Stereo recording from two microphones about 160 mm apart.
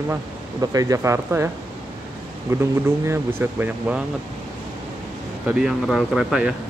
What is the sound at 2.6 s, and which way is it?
Speech, 15° right (ahead or behind).